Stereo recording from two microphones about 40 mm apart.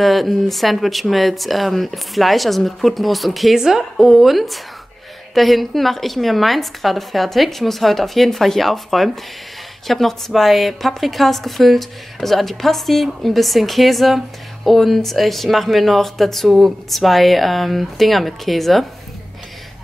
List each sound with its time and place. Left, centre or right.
0.0 s a woman's voice: centre
3.5 s a woman's voice: centre